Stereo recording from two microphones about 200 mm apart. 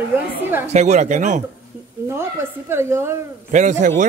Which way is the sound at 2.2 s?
10° right (ahead or behind).